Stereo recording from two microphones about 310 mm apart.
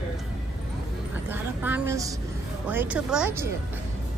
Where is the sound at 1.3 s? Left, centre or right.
Centre.